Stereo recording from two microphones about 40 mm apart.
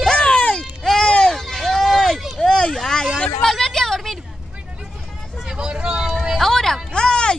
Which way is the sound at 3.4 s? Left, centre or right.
Centre.